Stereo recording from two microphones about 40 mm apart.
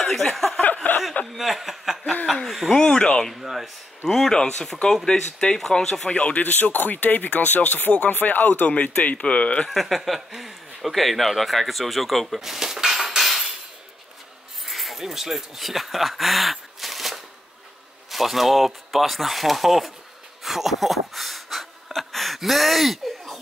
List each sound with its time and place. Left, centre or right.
0.0 s a sound: centre
0.8 s chuckle: left
1.3 s chuckle: centre
2.4 s a sound: centre
2.7 s speech: left
3.3 s speech: centre
4.0 s speech: centre
6.0 s speech: left
9.7 s speech: centre
14.7 s speech: centre
20.4 s a sound: centre